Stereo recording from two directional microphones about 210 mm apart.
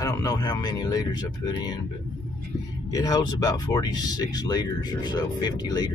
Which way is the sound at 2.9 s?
15° left (ahead or behind).